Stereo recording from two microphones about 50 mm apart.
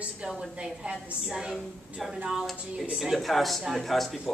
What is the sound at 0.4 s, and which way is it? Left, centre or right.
A woman's voice, centre.